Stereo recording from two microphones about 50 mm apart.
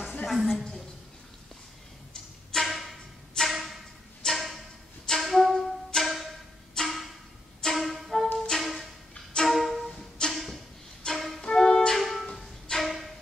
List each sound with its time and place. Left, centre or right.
0.3 s a woman's voice: centre
2.5 s music: centre
4.3 s a sound: centre
5.0 s music: centre
6.7 s a sound: centre
7.6 s music: centre
9.1 s music: centre
9.5 s music: centre
10.3 s a sound: centre
11.1 s music: centre
11.5 s music: centre
11.9 s music: centre